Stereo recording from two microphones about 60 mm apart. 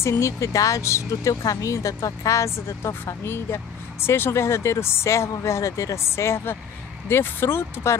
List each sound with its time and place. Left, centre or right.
0.0 s speech: left
1.4 s speech: left
6.0 s speech: left